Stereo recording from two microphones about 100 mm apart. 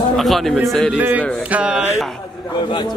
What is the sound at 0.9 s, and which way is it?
Speech, 15° right (ahead or behind).